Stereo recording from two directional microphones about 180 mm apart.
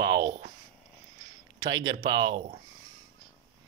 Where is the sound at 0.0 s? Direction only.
25° right (ahead or behind).